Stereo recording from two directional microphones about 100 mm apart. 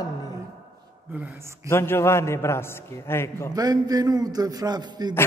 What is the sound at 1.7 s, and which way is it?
A man's voice, 25° left (ahead or behind).